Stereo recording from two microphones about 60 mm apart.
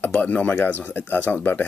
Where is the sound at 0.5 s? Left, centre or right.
Left.